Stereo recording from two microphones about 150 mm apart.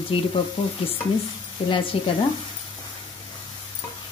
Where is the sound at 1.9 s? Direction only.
35° left (ahead or behind).